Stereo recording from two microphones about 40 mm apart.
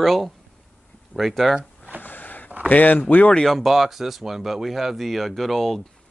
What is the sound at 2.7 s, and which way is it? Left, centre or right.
Speech, left.